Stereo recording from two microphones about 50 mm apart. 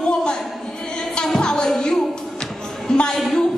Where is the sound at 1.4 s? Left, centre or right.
Centre.